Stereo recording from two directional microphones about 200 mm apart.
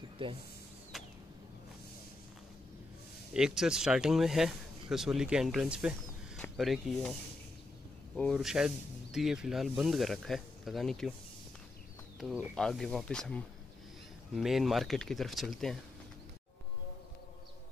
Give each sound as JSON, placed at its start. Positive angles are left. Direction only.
{"t": 0.2, "sound": "speech", "side_deg": -25}
{"t": 0.9, "sound": "a sound", "side_deg": 0}
{"t": 3.3, "sound": "speech", "side_deg": -5}
{"t": 8.2, "sound": "speech", "side_deg": 0}
{"t": 12.2, "sound": "speech", "side_deg": 0}